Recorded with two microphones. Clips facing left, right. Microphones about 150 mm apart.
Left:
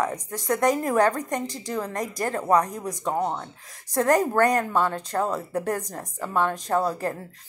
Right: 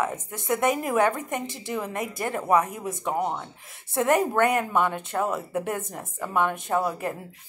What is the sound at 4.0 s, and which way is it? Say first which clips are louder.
A woman's voice: left 1 dB; 15° right (ahead or behind).